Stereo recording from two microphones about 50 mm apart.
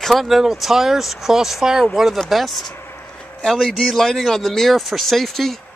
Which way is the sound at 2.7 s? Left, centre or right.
Left.